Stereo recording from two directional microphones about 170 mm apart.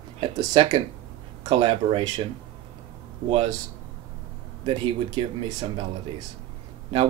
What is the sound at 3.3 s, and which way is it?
Speech, 35° right (ahead or behind).